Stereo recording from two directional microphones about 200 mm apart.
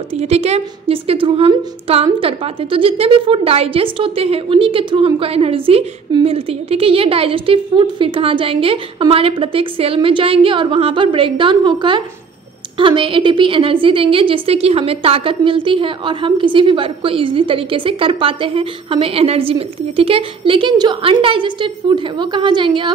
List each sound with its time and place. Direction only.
0.1 s a woman's voice: 30° right (ahead or behind)